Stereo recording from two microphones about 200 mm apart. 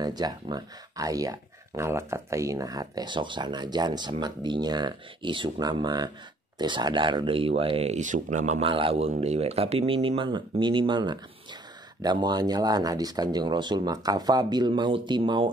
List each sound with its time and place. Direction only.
0.0 s speech: 20° right (ahead or behind)